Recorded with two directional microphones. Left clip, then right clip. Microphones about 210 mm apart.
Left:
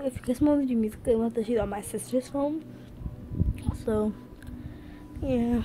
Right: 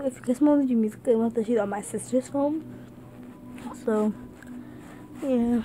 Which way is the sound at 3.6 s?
Centre (ahead or behind).